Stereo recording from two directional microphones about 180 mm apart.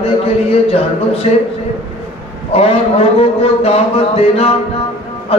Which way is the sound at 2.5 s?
35° left (ahead or behind).